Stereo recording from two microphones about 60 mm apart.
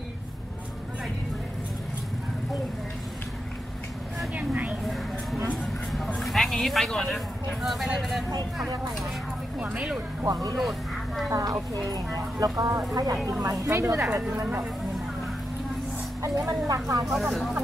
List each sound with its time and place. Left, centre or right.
4.4 s a sound: right
6.2 s a sound: centre
7.6 s speech: centre
10.2 s speech: right
10.6 s a sound: centre
11.2 s speech: right
13.3 s speech: right
16.2 s speech: right
17.0 s speech: centre